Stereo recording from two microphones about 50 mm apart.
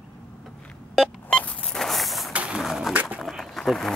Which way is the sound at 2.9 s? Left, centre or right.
Right.